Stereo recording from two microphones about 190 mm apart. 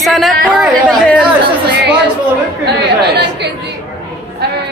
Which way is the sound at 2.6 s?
60° right (ahead or behind).